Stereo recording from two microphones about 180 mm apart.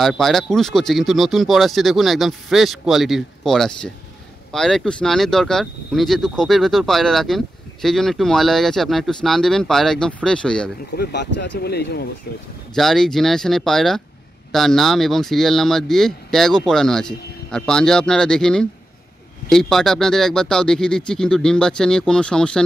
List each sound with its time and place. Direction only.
0.0 s speech: centre (ahead or behind)
11.0 s speech: 70° left (ahead or behind)
12.7 s speech: centre (ahead or behind)